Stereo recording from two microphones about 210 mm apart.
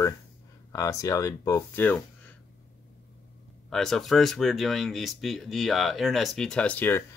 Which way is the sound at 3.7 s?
Centre (ahead or behind).